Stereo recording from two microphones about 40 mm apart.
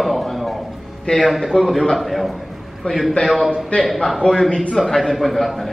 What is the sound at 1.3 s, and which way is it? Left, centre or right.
A man's voice, centre.